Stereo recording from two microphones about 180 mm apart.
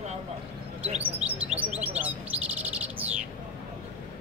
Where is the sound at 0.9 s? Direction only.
10° right (ahead or behind).